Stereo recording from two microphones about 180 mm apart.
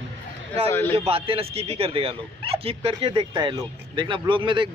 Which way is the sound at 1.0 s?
30° right (ahead or behind).